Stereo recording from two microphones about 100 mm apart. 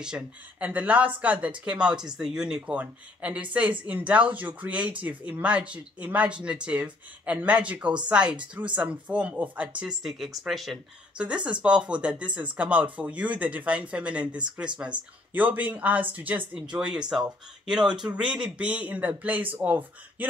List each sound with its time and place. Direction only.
0.0 s speech: 10° right (ahead or behind)
11.1 s speech: 10° right (ahead or behind)
17.1 s speech: 5° right (ahead or behind)